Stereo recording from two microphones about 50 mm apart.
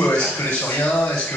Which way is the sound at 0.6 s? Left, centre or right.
Left.